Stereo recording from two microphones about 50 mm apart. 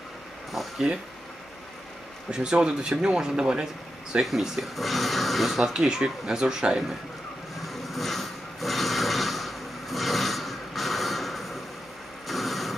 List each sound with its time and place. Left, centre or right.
2.3 s speech: centre
4.3 s speech: centre
5.6 s speech: centre
7.6 s snoring: centre
12.3 s vehicle: centre